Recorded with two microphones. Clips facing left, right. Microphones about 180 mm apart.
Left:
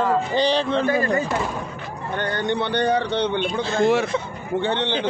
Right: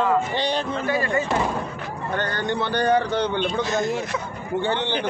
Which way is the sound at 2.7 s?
25° left (ahead or behind).